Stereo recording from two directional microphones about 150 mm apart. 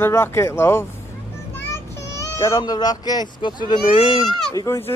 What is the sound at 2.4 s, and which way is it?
Speech, 20° left (ahead or behind).